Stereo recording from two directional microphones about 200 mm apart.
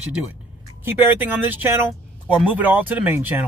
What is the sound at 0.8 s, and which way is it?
Speech, 10° right (ahead or behind).